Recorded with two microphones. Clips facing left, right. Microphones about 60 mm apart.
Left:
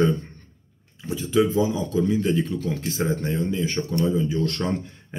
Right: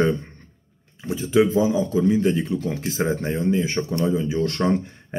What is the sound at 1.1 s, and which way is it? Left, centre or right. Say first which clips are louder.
Speech: right 2 dB; right.